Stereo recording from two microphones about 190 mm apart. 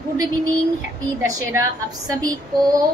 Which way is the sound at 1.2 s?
15° right (ahead or behind).